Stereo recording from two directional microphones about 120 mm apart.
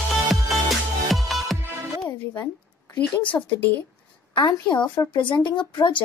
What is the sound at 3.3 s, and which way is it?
Speech, 30° left (ahead or behind).